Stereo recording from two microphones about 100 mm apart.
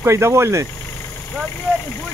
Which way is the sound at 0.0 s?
25° right (ahead or behind).